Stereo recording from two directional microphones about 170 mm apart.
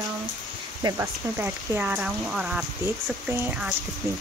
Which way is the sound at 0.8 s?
15° right (ahead or behind).